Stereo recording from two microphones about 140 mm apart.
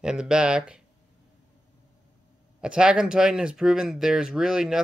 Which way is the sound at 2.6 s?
5° right (ahead or behind).